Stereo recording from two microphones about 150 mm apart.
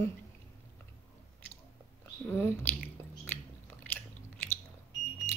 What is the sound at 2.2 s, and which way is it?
Chewing, 15° left (ahead or behind).